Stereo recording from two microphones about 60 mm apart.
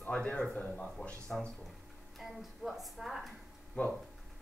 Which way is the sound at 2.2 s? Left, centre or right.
Centre.